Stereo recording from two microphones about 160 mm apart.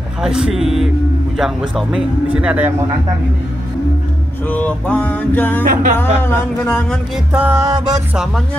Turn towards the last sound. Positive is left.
turn(degrees=-10)  # may be behind; listen again after turning